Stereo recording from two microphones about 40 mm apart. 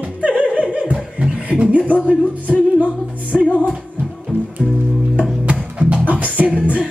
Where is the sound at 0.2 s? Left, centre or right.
Right.